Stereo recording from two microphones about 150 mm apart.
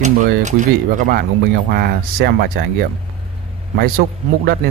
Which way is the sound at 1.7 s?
90° right.